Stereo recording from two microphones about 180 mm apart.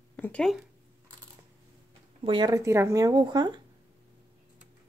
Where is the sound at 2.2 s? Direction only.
25° right (ahead or behind).